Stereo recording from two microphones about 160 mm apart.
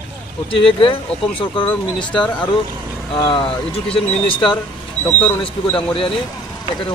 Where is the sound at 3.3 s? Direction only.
35° left (ahead or behind).